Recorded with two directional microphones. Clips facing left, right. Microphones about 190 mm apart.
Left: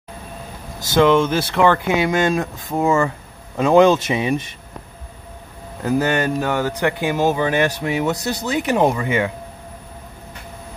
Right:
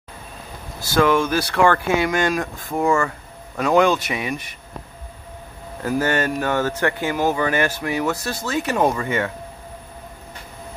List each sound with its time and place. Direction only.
0.7 s speech: 20° left (ahead or behind)
5.9 s speech: 15° left (ahead or behind)